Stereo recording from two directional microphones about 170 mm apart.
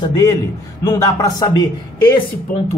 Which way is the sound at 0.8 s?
20° left (ahead or behind).